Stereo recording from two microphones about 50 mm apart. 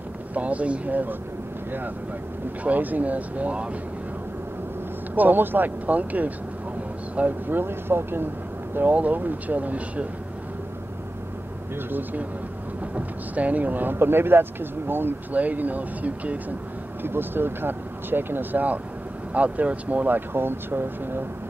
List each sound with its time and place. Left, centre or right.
0.3 s speech: right
2.6 s speech: right
5.1 s speech: right
8.7 s speech: right
11.9 s speech: right
15.3 s speech: right
17.0 s speech: right